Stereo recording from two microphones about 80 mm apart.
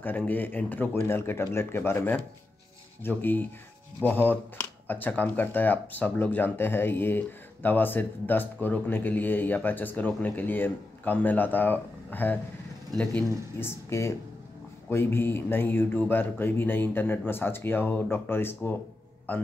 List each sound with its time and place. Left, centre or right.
0.3 s speech: left
13.6 s speech: left